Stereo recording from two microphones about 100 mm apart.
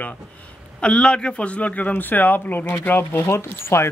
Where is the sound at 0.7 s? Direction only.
10° left (ahead or behind).